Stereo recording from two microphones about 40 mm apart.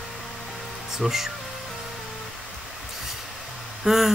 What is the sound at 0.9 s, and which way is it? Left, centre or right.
Speech, centre.